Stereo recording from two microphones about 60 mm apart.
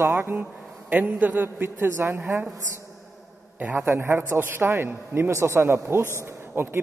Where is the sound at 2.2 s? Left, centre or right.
Right.